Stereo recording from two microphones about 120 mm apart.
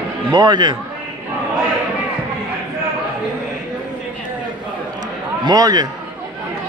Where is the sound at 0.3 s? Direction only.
40° right (ahead or behind).